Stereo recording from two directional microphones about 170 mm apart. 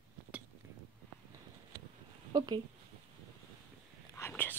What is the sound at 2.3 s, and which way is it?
Speech, 25° right (ahead or behind).